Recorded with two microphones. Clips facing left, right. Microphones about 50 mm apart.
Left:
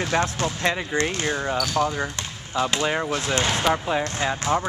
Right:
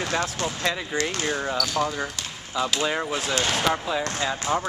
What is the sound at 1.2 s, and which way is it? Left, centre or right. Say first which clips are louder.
Speech: left 2 dB; centre.